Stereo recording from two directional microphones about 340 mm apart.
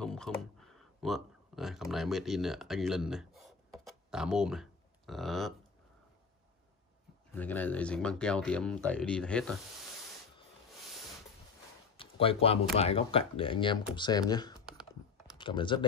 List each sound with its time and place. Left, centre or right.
0.0 s a sound: centre
7.3 s speech: centre
12.0 s speech: centre